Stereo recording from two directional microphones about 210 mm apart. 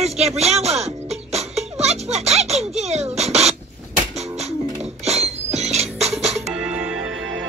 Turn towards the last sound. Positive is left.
turn(degrees=-5)  # may be behind; listen again after turning